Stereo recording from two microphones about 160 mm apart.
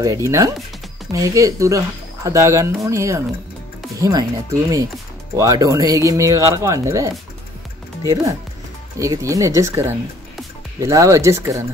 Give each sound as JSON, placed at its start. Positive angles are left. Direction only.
{"t": 0.0, "sound": "speech", "side_deg": -20}